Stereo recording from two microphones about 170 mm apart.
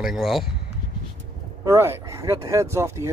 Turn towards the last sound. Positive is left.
turn(degrees=-15)  # may be behind; listen again after turning